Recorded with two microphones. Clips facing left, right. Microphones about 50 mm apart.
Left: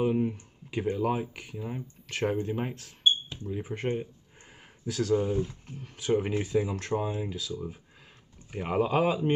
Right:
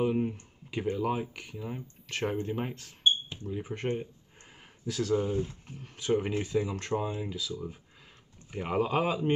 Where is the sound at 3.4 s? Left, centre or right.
Centre.